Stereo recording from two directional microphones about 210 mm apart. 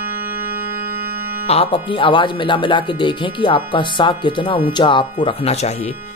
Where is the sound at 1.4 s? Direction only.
25° left (ahead or behind).